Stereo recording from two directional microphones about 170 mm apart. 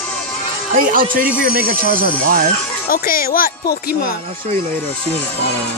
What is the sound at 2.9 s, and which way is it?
A woman's voice, 60° left (ahead or behind).